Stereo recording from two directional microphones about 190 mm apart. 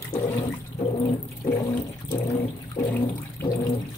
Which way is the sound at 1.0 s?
20° left (ahead or behind).